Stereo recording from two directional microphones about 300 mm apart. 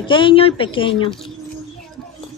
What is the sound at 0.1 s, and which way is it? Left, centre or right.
Speech, centre.